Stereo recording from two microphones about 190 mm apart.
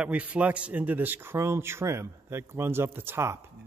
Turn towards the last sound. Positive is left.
turn(degrees=-10)  # may be behind; listen again after turning